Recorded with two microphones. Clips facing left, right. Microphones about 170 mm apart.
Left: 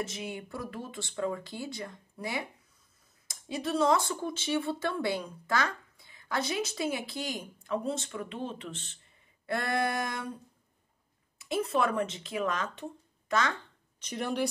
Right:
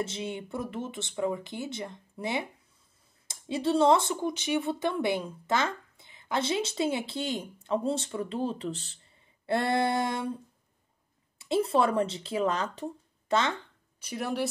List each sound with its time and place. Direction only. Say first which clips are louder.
0.0 s speech: right 3 dB; 25° right (ahead or behind)
11.3 s speech: right 4 dB; 30° right (ahead or behind)
13.9 s speech: right 1 dB; 5° right (ahead or behind)